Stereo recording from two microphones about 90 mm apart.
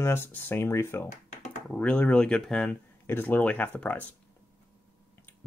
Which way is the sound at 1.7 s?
15° left (ahead or behind).